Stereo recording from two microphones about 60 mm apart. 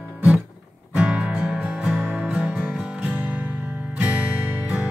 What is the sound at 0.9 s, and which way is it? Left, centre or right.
Music, centre.